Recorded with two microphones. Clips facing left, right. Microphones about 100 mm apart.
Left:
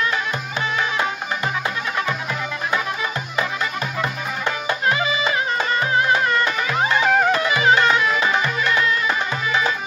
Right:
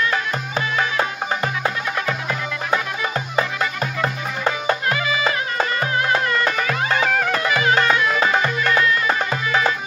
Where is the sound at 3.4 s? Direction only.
35° right (ahead or behind).